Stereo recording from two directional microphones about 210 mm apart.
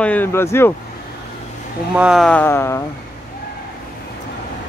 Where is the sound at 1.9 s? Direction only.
5° right (ahead or behind); by 2.8 s 10° left (ahead or behind).